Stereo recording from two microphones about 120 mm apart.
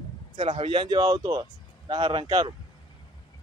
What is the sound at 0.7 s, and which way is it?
Speech, 40° right (ahead or behind).